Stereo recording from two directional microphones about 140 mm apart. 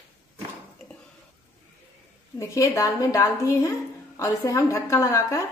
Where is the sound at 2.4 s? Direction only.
20° left (ahead or behind).